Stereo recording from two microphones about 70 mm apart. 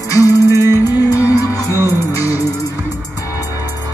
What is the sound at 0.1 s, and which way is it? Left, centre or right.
Music, left.